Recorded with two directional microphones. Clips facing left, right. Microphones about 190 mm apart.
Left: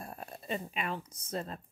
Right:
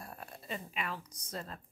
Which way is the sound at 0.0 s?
25° left (ahead or behind).